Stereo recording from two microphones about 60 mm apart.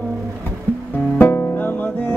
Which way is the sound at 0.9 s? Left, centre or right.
Left.